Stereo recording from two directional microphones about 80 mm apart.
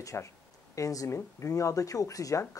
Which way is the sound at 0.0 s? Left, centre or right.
Left.